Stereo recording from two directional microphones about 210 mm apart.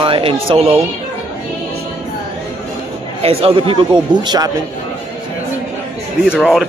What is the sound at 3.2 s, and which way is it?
Speech, 25° right (ahead or behind).